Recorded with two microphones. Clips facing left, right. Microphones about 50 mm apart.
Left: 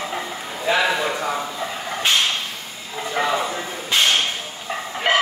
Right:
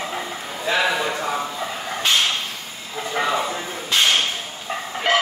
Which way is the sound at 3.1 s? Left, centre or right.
Centre.